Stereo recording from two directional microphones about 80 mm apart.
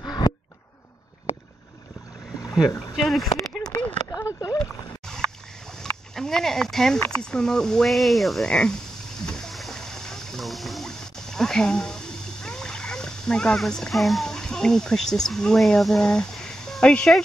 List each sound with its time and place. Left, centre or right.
0.0 s a sound: left
3.0 s speech: centre
3.3 s a sound: centre
4.1 s a sound: left
5.0 s boat: centre
5.8 s speech: centre
8.5 s speech: centre
9.2 s water: centre
12.4 s speech: centre